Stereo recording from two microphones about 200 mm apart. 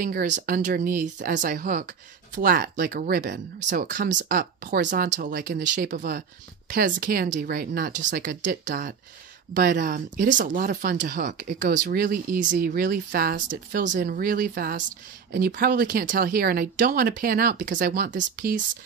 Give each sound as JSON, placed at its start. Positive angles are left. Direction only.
{"t": 0.0, "sound": "speech", "side_deg": -45}